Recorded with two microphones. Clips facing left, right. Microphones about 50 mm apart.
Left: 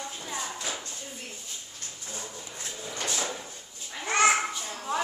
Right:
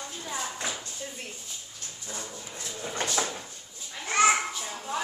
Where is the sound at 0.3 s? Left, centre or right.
Right.